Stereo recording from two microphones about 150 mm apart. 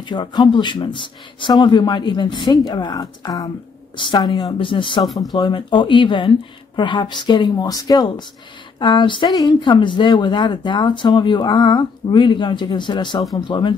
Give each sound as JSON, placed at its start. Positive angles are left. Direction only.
{"t": 0.0, "sound": "speech", "side_deg": 30}
{"t": 5.0, "sound": "speech", "side_deg": 0}
{"t": 5.3, "sound": "a woman's voice", "side_deg": 30}